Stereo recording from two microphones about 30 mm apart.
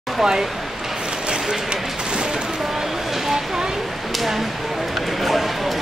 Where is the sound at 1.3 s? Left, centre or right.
Right.